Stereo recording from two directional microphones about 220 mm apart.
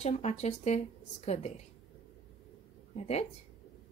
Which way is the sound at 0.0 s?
30° left (ahead or behind).